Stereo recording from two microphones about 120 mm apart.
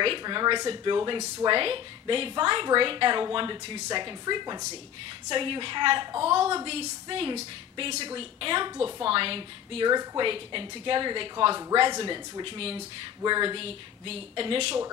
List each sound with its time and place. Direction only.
0.0 s a woman's voice: 45° right (ahead or behind)
9.8 s a woman's voice: 40° right (ahead or behind)
13.2 s a woman's voice: 40° right (ahead or behind)